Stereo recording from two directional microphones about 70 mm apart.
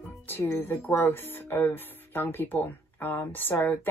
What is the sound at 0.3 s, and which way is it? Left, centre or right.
A woman's voice, left.